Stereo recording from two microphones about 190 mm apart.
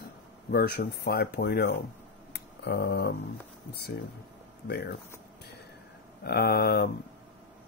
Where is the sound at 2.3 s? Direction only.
60° left (ahead or behind).